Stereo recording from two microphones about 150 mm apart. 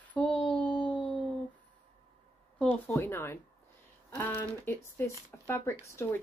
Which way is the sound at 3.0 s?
15° left (ahead or behind).